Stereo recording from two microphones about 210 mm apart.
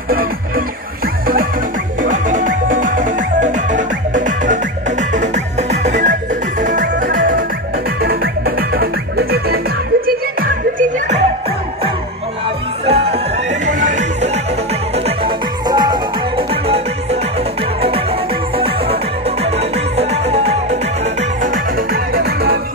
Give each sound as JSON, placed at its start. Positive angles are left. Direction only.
{"t": 0.1, "sound": "music", "side_deg": -45}
{"t": 12.8, "sound": "music", "side_deg": -30}
{"t": 18.6, "sound": "music", "side_deg": -25}